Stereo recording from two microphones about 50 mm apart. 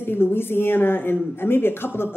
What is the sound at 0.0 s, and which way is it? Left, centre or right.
A woman's voice, left.